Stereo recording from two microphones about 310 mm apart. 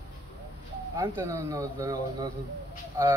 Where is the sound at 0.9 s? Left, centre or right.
Centre.